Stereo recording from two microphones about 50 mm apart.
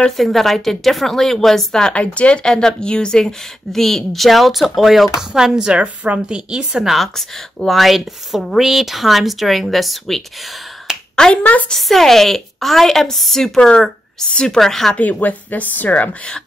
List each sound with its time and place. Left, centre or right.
0.2 s a woman's voice: centre
6.8 s speech: centre
10.9 s finger snapping: centre
11.7 s speech: centre
13.6 s speech: centre
14.6 s speech: centre
15.0 s speech: left